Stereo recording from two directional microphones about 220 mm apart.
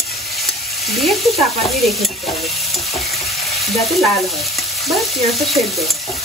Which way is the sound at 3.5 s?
Centre (ahead or behind).